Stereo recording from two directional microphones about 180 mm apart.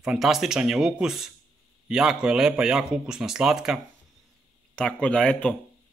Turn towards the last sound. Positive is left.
turn(degrees=5)  # may be behind; listen again after turning